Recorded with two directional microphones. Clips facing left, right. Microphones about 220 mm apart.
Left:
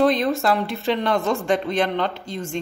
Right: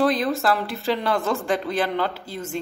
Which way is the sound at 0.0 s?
Centre (ahead or behind).